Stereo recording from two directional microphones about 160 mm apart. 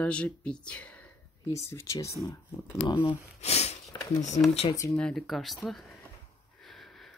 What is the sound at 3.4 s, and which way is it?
Sniff, 40° left (ahead or behind).